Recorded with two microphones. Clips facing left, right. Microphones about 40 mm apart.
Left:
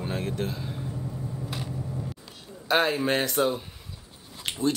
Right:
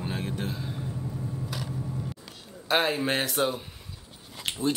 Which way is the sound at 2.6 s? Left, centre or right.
Centre.